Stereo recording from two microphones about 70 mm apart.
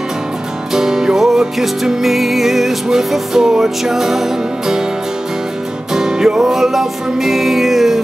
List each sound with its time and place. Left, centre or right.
0.7 s music: centre
5.9 s music: centre